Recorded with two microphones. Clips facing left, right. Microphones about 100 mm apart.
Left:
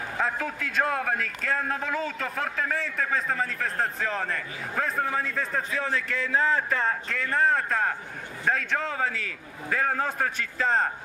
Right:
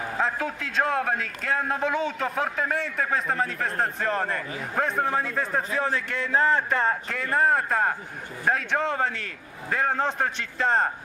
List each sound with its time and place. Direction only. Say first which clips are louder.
0.2 s a man's voice: right 1 dB; 5° right (ahead or behind)
3.6 s a man's voice: right 1 dB; 30° right (ahead or behind)
4.0 s speech: right 3 dB; centre (ahead or behind)
4.7 s a man's voice: right 3 dB; 25° right (ahead or behind)
6.3 s a man's voice: right 3 dB; centre (ahead or behind)
8.8 s speech: right 3 dB; centre (ahead or behind)
9.7 s a man's voice: right 2 dB; 15° right (ahead or behind)
10.3 s speech: right 1 dB; centre (ahead or behind)